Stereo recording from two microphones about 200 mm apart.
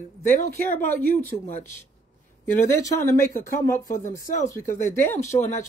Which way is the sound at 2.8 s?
15° left (ahead or behind).